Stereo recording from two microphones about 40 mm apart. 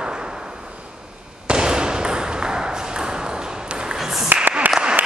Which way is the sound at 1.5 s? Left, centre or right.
Centre.